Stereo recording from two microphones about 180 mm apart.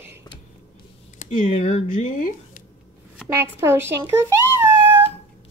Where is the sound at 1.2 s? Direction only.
40° left (ahead or behind).